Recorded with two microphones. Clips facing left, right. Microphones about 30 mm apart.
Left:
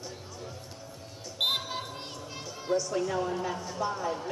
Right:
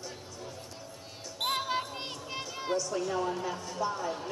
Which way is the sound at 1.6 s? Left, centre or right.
Right.